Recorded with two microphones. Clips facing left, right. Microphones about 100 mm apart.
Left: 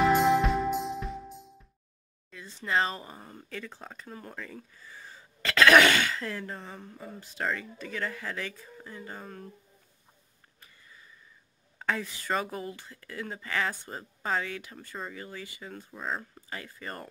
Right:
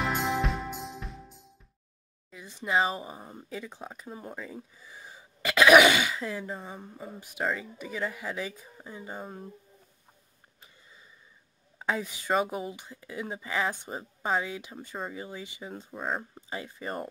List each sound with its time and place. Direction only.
0.0 s music: centre (ahead or behind)
2.3 s speech: 15° right (ahead or behind)
10.6 s wheeze: 20° right (ahead or behind)
11.8 s speech: 15° right (ahead or behind)